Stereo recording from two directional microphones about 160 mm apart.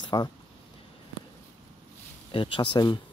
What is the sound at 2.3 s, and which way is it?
Speech, 30° left (ahead or behind).